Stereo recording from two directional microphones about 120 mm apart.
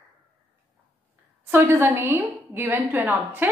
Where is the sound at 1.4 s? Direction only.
20° right (ahead or behind).